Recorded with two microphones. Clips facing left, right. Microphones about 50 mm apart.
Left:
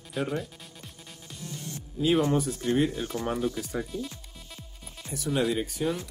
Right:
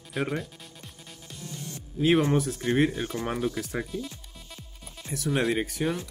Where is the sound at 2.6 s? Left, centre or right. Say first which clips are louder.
Right 2 dB; right.